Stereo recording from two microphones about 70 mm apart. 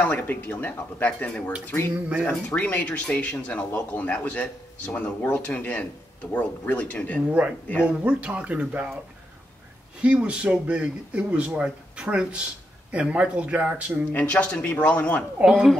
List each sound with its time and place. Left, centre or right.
0.0 s a man's voice: left
7.2 s speech: centre
10.0 s speech: centre
14.1 s a man's voice: centre
15.4 s speech: centre